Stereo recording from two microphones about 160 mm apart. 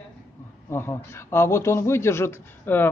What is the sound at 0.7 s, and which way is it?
Speech, 15° left (ahead or behind).